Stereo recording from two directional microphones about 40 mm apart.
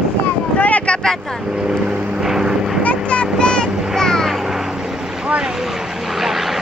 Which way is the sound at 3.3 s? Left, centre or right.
Left.